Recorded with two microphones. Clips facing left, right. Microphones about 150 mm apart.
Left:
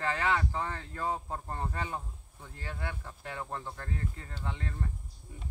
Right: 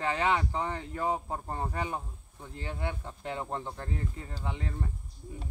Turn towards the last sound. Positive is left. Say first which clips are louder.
# right 2 dB
turn(degrees=-15)  # may be behind; listen again after turning